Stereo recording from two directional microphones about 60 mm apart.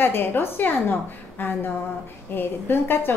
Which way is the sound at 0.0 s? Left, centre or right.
Left.